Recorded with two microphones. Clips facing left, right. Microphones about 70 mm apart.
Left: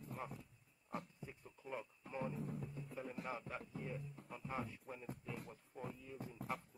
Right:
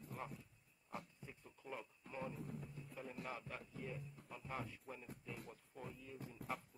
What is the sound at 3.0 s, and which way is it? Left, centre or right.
Music, centre.